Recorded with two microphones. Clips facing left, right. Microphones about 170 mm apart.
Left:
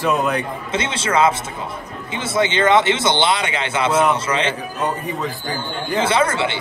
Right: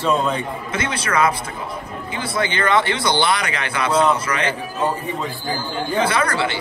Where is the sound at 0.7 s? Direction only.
25° left (ahead or behind).